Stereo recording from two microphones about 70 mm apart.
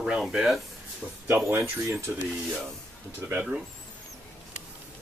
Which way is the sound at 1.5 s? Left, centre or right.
Right.